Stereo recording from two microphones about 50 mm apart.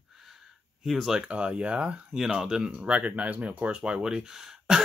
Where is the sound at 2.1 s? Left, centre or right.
Centre.